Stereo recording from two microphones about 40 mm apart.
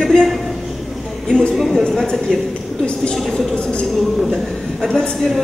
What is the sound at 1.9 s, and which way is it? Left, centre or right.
Speech, left.